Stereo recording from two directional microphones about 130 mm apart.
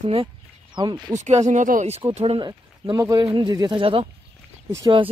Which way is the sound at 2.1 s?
50° right (ahead or behind).